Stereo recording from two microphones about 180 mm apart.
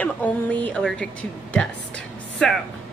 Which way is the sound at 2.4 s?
5° left (ahead or behind).